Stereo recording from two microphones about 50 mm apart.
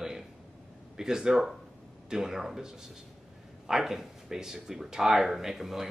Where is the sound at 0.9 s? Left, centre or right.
Centre.